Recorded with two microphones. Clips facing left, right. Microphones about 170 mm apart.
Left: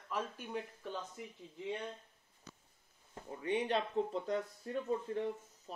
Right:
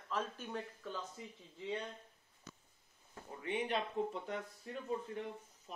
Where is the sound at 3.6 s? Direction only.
35° left (ahead or behind).